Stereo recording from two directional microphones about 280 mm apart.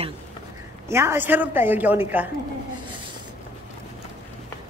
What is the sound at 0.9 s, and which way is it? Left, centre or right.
A woman's voice, centre.